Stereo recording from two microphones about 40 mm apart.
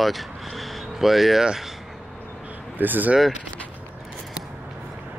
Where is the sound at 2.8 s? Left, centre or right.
Right.